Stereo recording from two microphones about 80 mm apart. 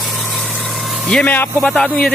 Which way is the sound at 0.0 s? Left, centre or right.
Centre.